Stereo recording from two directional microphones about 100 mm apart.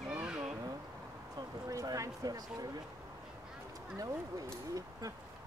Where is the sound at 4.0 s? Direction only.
35° right (ahead or behind).